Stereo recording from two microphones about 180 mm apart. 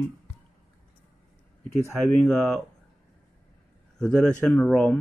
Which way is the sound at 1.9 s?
5° left (ahead or behind).